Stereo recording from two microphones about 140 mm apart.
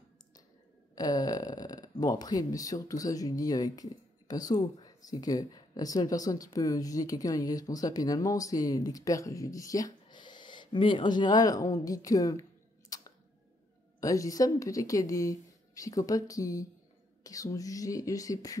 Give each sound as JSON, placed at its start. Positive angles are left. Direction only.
{"t": 0.9, "sound": "speech", "side_deg": 30}
{"t": 13.9, "sound": "speech", "side_deg": 25}